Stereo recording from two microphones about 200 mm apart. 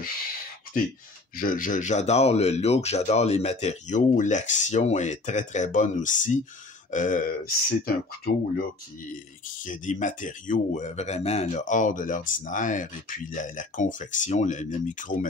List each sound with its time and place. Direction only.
1.3 s speech: 45° left (ahead or behind)
9.1 s speech: 40° left (ahead or behind)